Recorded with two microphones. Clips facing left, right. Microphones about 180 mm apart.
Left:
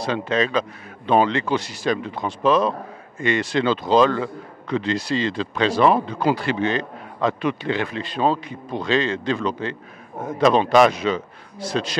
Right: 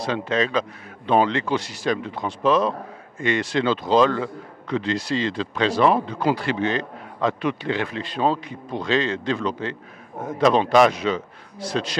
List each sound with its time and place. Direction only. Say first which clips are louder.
0.0 s a man's voice: left 1 dB; 15° left (ahead or behind)
5.9 s a man's voice: left 1 dB; 25° left (ahead or behind)
6.2 s a man's voice: left 1 dB; 15° left (ahead or behind)
10.1 s a man's voice: left 1 dB; 25° left (ahead or behind)
10.5 s a man's voice: left 1 dB; 15° left (ahead or behind)